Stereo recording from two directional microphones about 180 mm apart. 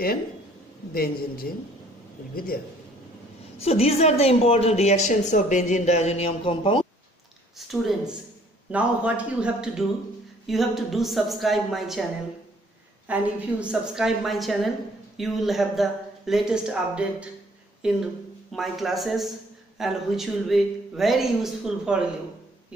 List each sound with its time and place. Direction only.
0.9 s speech: 55° left (ahead or behind)
3.5 s speech: 35° left (ahead or behind)
7.5 s a man's voice: centre (ahead or behind)
13.1 s speech: 5° right (ahead or behind)